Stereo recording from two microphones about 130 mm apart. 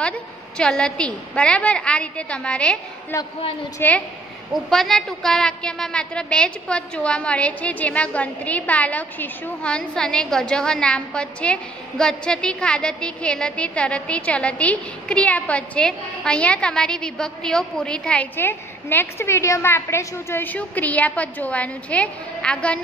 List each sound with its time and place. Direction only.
0.6 s a woman's voice: 5° left (ahead or behind)
3.8 s a woman's voice: 15° left (ahead or behind)
4.6 s a woman's voice: 5° left (ahead or behind)